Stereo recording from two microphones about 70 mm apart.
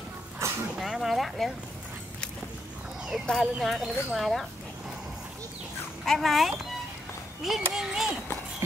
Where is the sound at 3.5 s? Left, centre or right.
Centre.